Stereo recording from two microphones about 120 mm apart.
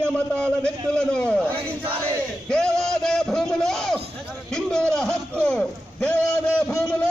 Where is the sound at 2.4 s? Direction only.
5° left (ahead or behind).